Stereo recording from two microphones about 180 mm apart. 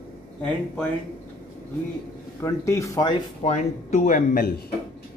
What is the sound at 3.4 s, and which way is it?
Speech, 40° left (ahead or behind).